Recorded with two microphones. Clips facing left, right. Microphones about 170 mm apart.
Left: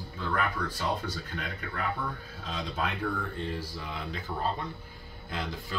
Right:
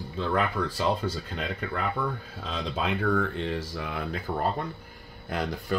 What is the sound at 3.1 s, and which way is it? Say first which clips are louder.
Speech: right 7 dB; 90° right.